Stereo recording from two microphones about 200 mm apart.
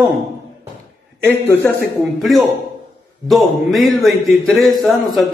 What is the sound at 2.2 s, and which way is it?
Speech, centre (ahead or behind).